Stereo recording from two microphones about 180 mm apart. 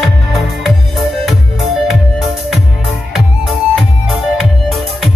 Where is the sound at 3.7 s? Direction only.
Centre (ahead or behind).